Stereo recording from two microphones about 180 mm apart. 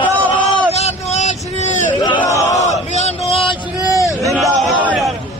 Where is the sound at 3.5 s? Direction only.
20° left (ahead or behind).